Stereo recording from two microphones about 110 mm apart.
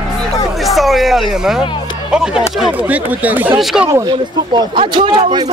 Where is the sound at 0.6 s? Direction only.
Centre (ahead or behind).